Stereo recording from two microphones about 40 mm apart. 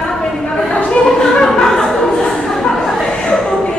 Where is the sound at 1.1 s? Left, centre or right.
Centre.